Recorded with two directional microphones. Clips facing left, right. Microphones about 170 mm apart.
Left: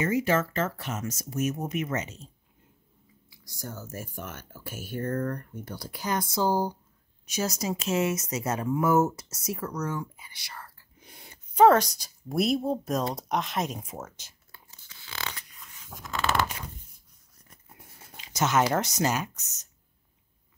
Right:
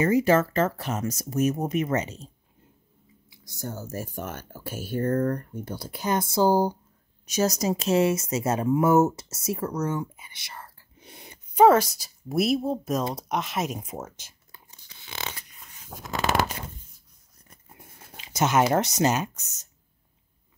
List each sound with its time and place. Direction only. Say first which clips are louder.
0.0 s speech: right 5 dB; 35° right (ahead or behind)
3.3 s speech: right 5 dB; 25° right (ahead or behind)
11.5 s speech: right 1 dB; 10° right (ahead or behind)
14.2 s whispering: right 1 dB; 15° right (ahead or behind)
16.0 s shuffling cards: right 3 dB; 40° right (ahead or behind)
18.1 s speech: right 2 dB; 20° right (ahead or behind)